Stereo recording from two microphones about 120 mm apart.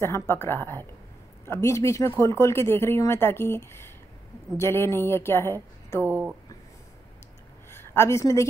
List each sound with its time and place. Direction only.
0.0 s speech: 20° left (ahead or behind)
6.0 s speech: 15° right (ahead or behind)
7.8 s a woman's voice: 20° left (ahead or behind)